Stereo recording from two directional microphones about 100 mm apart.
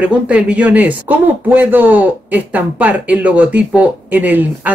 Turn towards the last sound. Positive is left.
turn(degrees=-15)  # may be behind; listen again after turning